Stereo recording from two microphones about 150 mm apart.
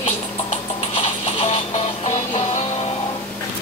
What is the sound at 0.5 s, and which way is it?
Music, 40° left (ahead or behind).